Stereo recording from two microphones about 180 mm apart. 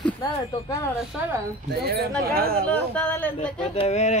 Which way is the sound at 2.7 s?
5° left (ahead or behind).